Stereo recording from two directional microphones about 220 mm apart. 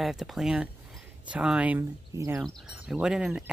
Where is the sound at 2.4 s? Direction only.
Centre (ahead or behind).